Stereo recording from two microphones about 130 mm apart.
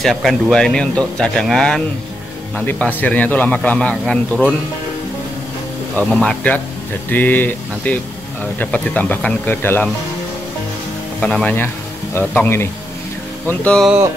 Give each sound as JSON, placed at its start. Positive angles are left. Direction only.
{"t": 0.0, "sound": "speech", "side_deg": 0}
{"t": 5.9, "sound": "speech", "side_deg": 10}
{"t": 11.1, "sound": "speech", "side_deg": 10}